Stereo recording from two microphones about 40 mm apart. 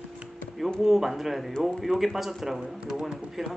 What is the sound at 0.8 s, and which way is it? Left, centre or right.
Speech, centre.